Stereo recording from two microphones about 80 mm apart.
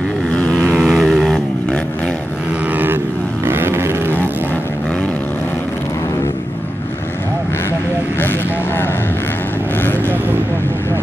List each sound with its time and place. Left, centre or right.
0.3 s vehicle: centre
3.4 s vehicle: right
8.2 s vehicle: left